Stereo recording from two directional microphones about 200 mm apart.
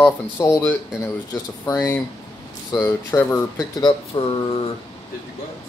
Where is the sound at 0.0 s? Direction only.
10° left (ahead or behind); by 4.6 s 30° left (ahead or behind).